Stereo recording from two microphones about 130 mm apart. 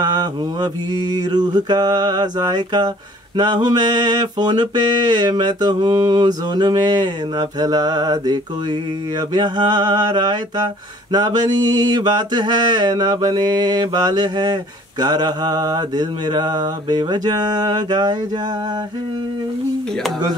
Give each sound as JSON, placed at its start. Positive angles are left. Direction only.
{"t": 0.0, "sound": "mantra", "side_deg": -30}